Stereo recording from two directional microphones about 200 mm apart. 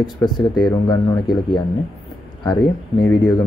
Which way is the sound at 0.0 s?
20° left (ahead or behind).